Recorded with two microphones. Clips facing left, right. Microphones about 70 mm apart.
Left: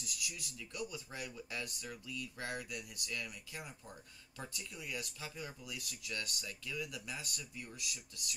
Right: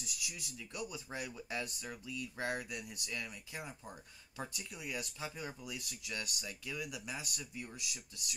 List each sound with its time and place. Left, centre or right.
0.0 s speech: right